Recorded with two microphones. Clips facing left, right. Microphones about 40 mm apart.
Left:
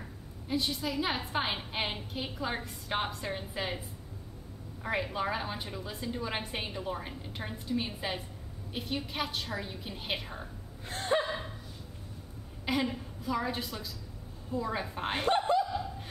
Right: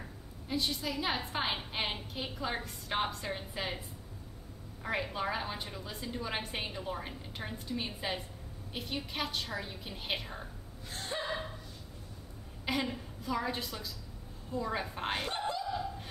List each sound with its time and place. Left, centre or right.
0.0 s a woman's voice: centre
4.8 s a woman's voice: centre
10.9 s gasp: left
11.2 s a sound: centre
12.6 s a woman's voice: centre
15.2 s snicker: left
15.6 s snicker: centre